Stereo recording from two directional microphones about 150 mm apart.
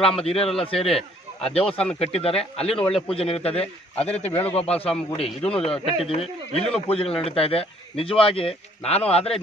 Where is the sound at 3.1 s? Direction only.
40° left (ahead or behind).